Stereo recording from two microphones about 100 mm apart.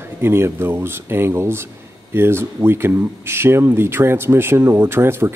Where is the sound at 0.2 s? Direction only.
25° right (ahead or behind).